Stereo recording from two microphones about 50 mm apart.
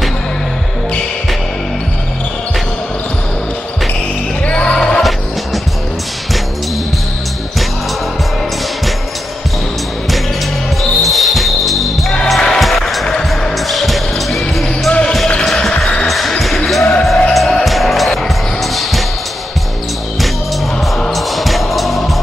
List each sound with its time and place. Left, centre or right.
4.5 s music: left
4.7 s music: centre
10.8 s basketball bounce: centre
12.3 s music: centre
14.9 s music: left
15.5 s basketball bounce: centre
17.3 s music: centre
21.1 s music: centre